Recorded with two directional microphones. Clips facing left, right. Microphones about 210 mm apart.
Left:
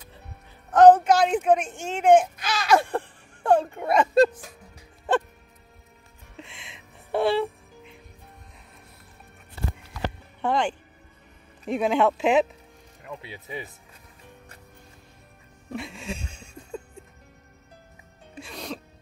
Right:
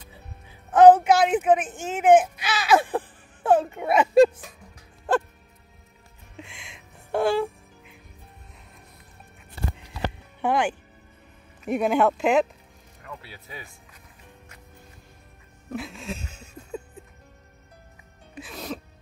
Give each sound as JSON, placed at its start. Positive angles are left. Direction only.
{"t": 0.7, "sound": "speech", "side_deg": -5}
{"t": 6.3, "sound": "music", "side_deg": 0}
{"t": 10.4, "sound": "speech", "side_deg": -5}
{"t": 13.0, "sound": "speech", "side_deg": 20}
{"t": 15.7, "sound": "laughter", "side_deg": 0}
{"t": 18.4, "sound": "music", "side_deg": 0}